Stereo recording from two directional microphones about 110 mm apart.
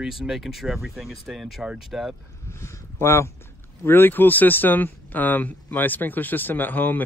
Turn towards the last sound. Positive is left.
turn(degrees=15)  # may be behind; listen again after turning